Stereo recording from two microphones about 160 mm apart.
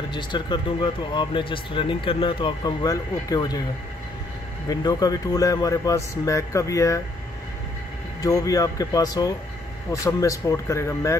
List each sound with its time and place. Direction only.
0.1 s speech: 30° left (ahead or behind)
4.6 s speech: 25° left (ahead or behind)
8.2 s speech: 20° left (ahead or behind)